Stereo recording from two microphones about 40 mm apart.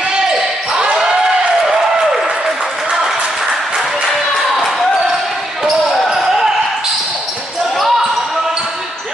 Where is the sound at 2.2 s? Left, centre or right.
Centre.